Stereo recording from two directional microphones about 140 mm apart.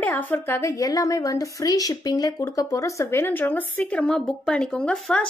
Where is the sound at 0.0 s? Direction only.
15° left (ahead or behind).